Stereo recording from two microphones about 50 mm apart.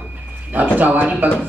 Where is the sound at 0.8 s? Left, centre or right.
Right.